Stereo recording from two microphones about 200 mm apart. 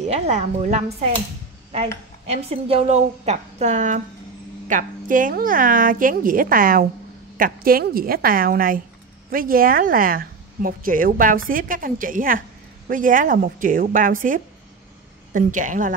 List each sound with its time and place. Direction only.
0.0 s a woman's voice: 35° right (ahead or behind)
2.2 s a woman's voice: 30° right (ahead or behind)